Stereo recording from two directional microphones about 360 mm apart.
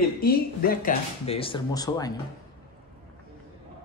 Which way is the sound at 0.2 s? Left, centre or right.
Left.